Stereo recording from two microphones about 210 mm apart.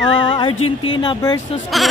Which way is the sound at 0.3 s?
25° left (ahead or behind).